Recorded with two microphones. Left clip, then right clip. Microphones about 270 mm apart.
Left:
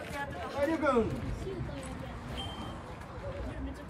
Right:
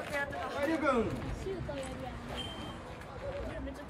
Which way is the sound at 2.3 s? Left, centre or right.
Centre.